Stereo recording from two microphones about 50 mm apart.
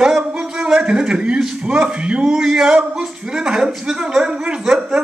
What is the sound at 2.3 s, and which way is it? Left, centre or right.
A man's voice, centre.